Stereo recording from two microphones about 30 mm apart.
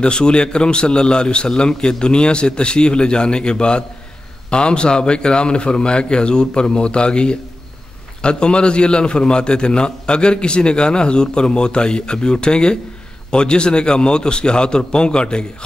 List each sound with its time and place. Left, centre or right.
0.0 s a man's voice: left